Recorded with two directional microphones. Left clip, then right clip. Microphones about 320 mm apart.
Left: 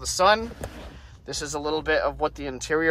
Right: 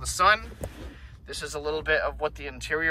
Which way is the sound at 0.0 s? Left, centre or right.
Centre.